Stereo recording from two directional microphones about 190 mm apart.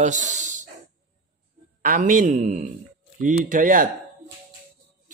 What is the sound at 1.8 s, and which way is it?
Mantra, 45° right (ahead or behind).